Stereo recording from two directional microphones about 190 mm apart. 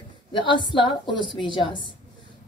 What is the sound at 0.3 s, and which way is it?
A woman's voice, 25° left (ahead or behind).